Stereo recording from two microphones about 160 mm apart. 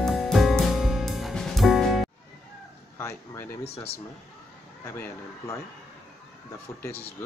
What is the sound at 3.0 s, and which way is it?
Speech, 15° left (ahead or behind).